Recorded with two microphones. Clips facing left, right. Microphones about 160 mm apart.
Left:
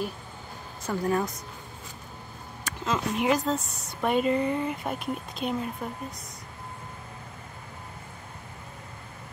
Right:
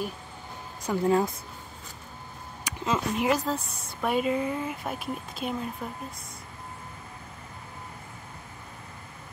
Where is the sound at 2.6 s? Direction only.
10° right (ahead or behind).